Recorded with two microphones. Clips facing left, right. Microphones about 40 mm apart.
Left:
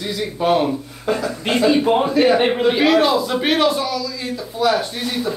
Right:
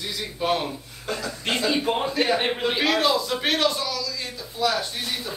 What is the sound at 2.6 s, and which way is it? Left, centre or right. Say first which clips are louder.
A man's voice: left 6 dB; centre.